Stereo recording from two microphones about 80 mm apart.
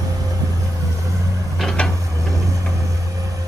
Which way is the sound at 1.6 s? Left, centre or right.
Centre.